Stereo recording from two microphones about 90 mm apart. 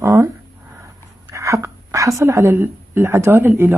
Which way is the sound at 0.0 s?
30° right (ahead or behind).